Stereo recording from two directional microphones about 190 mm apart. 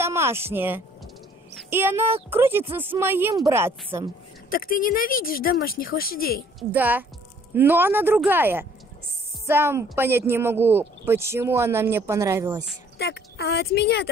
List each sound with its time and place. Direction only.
0.0 s a woman's voice: 15° right (ahead or behind)
4.5 s speech: 50° left (ahead or behind)
6.7 s speech: 10° right (ahead or behind)
12.9 s speech: 60° left (ahead or behind)